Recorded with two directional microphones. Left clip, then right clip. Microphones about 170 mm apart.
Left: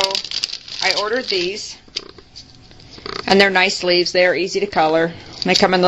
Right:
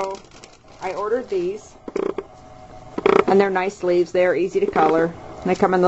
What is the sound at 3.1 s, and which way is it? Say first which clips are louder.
Speech: left 3 dB; 20° left (ahead or behind).